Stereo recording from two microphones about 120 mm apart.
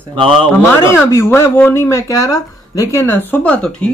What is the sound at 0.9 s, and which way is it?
Speech, 20° left (ahead or behind).